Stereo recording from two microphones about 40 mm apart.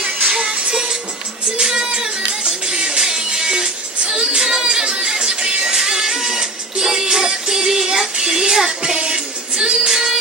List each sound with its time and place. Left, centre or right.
0.4 s music: right